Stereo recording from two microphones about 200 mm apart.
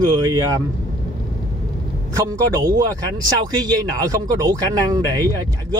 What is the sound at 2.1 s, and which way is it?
Speech, 15° right (ahead or behind).